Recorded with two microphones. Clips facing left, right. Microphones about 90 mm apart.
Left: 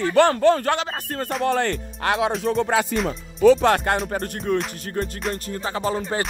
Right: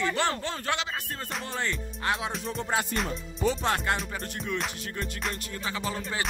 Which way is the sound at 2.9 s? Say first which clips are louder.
Left 7 dB; centre (ahead or behind).